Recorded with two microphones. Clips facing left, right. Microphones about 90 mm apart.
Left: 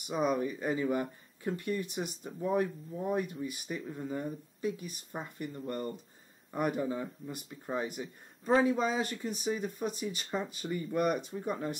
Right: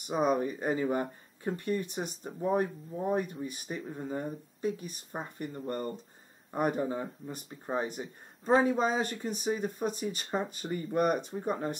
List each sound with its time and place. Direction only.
0.1 s speech: 40° right (ahead or behind)
3.8 s speech: 25° right (ahead or behind)